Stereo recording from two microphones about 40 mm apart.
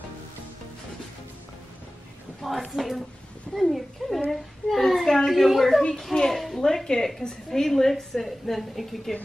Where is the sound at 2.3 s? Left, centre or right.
Centre.